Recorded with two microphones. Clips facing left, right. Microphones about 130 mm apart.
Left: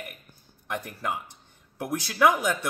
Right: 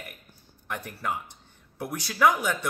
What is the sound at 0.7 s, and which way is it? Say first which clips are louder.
Speech: left 1 dB; 10° left (ahead or behind).